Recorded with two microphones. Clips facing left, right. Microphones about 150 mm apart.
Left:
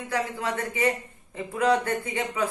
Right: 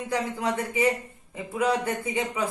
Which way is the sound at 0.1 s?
15° right (ahead or behind).